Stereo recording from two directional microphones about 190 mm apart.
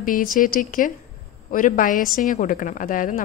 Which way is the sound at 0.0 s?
45° left (ahead or behind).